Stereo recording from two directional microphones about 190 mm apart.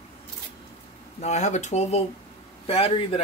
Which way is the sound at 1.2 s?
35° left (ahead or behind).